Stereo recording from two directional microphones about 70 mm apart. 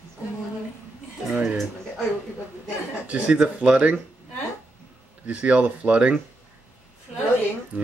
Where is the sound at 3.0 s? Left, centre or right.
Centre.